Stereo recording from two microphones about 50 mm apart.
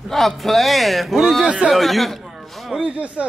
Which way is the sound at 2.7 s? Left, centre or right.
Centre.